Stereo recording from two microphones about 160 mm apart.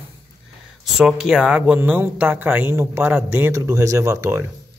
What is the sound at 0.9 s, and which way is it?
Speech, 5° right (ahead or behind).